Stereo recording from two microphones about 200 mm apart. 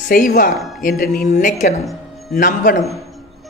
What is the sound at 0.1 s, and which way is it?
A man's voice, 40° left (ahead or behind).